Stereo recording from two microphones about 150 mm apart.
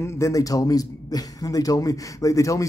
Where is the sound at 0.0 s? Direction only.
20° left (ahead or behind).